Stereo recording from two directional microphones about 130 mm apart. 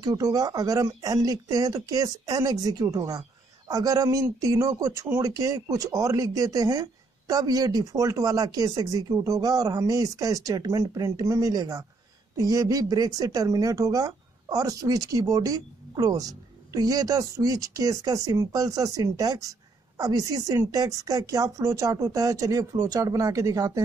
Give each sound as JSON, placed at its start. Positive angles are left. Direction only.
{"t": 0.0, "sound": "speech", "side_deg": -30}